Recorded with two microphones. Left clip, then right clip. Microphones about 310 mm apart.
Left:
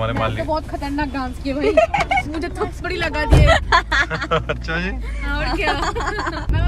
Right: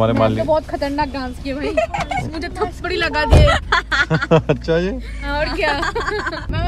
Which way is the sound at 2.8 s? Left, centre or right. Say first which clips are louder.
Right 3 dB; centre.